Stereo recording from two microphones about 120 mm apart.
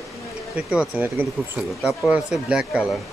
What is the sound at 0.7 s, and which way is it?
Speech, 10° right (ahead or behind).